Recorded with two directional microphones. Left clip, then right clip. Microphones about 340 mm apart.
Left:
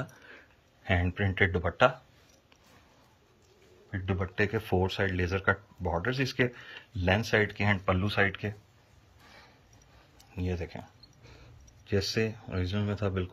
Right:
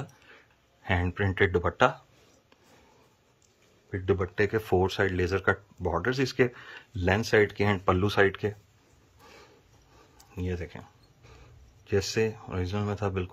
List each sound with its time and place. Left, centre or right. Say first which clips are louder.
0.8 s speech: right 1 dB; centre
3.9 s speech: right 6 dB; right
10.1 s speech: right 1 dB; centre